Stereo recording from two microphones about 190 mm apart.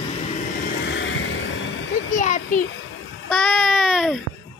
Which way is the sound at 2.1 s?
40° left (ahead or behind).